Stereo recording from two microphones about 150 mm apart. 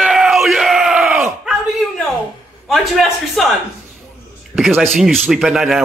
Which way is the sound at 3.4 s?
Centre (ahead or behind).